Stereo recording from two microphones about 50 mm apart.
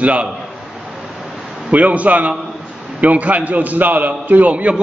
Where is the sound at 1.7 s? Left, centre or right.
Right.